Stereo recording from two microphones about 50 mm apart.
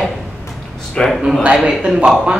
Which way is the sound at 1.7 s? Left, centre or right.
Centre.